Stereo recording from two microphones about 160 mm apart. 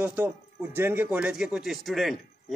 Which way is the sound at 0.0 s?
10° right (ahead or behind).